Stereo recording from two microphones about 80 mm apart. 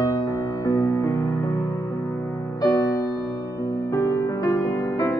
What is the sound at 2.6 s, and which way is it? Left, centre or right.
Music, left.